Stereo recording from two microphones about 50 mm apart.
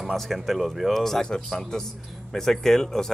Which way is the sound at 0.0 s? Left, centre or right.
Centre.